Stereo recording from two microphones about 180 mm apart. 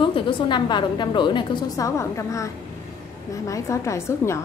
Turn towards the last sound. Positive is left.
turn(degrees=15)  # may be behind; listen again after turning